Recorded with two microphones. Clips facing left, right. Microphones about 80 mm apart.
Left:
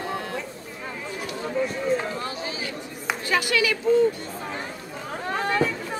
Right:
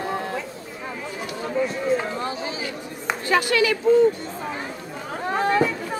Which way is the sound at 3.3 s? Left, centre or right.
Right.